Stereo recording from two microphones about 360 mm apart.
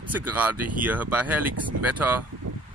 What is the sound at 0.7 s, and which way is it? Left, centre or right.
Speech, centre.